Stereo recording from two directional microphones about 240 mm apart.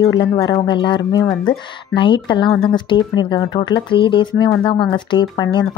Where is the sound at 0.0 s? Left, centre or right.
Centre.